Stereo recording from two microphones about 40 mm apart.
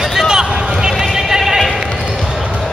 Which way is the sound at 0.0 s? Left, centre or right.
Centre.